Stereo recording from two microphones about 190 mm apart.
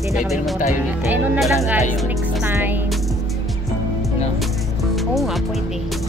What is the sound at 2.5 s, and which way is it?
Speech, 10° right (ahead or behind).